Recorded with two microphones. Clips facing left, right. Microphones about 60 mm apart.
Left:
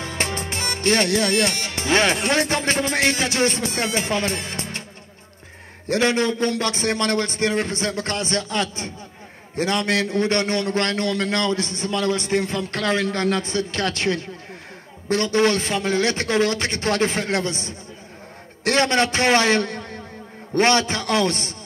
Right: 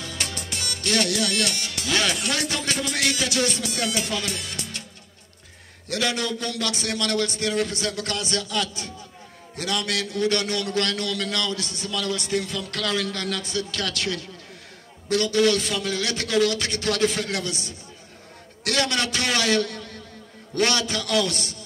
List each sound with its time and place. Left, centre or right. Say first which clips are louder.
0.0 s music: left 6 dB; left
5.9 s a man's voice: left 6 dB; left